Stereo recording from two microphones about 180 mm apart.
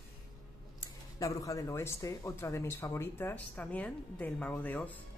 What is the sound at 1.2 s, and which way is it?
Speech, 20° left (ahead or behind).